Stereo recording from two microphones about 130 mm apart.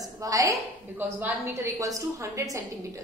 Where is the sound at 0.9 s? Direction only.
15° right (ahead or behind).